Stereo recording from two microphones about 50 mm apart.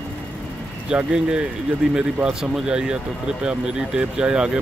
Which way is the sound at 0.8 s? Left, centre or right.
Centre.